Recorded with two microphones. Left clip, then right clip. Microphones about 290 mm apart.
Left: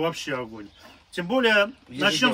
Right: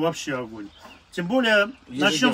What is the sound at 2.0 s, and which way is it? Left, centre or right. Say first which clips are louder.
Speech: even; centre.